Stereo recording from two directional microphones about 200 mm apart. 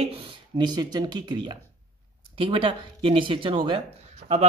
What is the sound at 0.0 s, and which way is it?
Speech, 30° right (ahead or behind).